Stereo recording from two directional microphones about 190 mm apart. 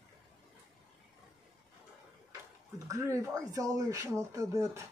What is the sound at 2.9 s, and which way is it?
Speech, 15° right (ahead or behind).